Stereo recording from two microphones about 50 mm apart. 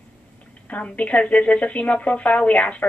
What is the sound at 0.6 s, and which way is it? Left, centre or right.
Speech, left.